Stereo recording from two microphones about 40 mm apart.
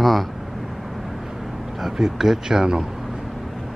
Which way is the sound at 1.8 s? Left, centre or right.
Centre.